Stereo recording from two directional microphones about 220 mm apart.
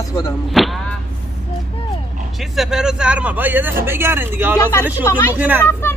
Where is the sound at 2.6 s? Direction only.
5° right (ahead or behind).